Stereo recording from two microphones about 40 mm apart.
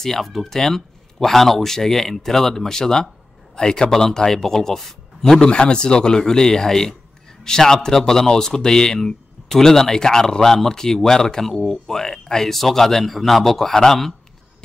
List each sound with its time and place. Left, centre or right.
0.0 s speech: centre
5.4 s speech: left